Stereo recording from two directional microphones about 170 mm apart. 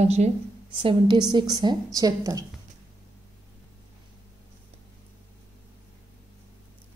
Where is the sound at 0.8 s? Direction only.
30° right (ahead or behind).